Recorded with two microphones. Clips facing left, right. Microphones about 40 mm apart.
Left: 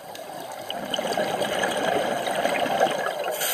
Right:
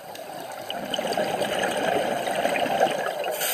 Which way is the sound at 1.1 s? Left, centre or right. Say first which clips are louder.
Even; left.